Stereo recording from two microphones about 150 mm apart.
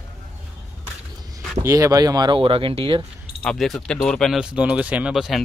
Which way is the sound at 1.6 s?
25° right (ahead or behind).